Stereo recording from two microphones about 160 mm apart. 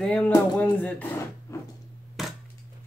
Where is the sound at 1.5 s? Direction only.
20° left (ahead or behind).